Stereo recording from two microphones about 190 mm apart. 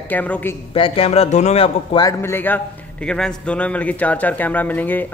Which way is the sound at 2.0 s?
10° left (ahead or behind).